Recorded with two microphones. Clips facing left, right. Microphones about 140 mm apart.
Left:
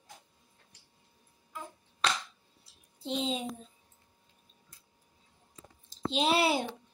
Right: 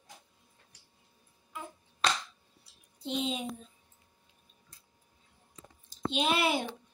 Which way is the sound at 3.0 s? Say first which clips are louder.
Left 1 dB; 30° left (ahead or behind).